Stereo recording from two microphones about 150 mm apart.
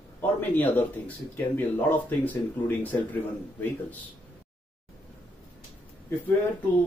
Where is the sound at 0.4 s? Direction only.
10° left (ahead or behind).